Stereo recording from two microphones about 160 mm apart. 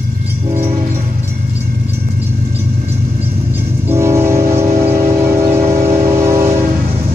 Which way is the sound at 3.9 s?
15° right (ahead or behind).